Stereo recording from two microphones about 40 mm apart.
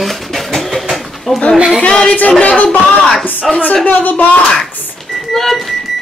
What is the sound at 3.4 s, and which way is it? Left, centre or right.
Speech, centre.